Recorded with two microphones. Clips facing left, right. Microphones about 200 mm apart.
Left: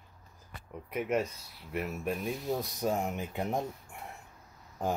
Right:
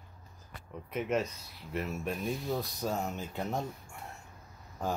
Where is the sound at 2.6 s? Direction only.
15° left (ahead or behind).